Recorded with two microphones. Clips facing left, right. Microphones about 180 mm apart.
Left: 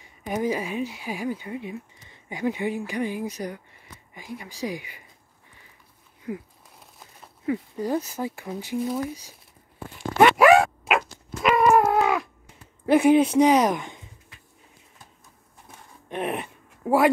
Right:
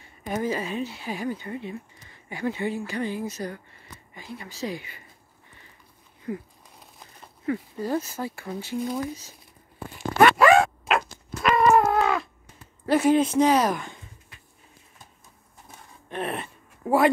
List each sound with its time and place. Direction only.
0.0 s speech: 15° left (ahead or behind)
6.2 s a sound: 5° left (ahead or behind)
7.4 s speech: 15° left (ahead or behind)
10.1 s zipper: 15° left (ahead or behind)
11.4 s cat: 10° left (ahead or behind)
12.8 s speech: 15° left (ahead or behind)
16.1 s speech: 15° left (ahead or behind)